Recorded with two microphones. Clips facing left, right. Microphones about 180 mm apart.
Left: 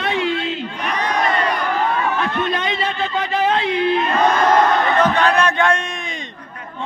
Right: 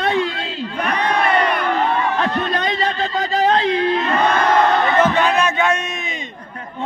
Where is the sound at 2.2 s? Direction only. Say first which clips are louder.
Right 1 dB; 40° right (ahead or behind).